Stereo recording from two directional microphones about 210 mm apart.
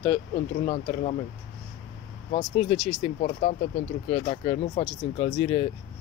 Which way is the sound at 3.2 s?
35° left (ahead or behind).